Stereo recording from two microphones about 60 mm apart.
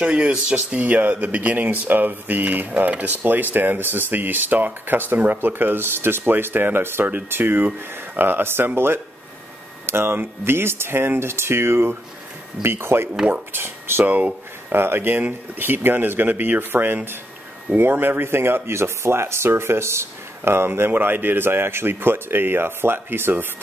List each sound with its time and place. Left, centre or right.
0.0 s speech: centre; by 14.0 s right
14.0 s speech: right
14.7 s speech: right